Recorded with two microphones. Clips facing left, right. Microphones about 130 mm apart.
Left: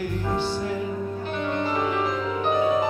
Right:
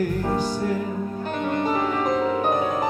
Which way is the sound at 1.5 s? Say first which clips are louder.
Right 2 dB; 45° right (ahead or behind).